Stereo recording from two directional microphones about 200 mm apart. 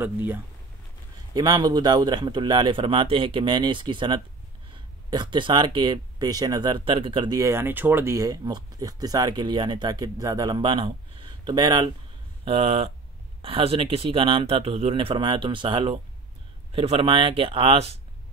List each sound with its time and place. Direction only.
0.0 s speech: 10° right (ahead or behind); by 17.7 s 25° right (ahead or behind)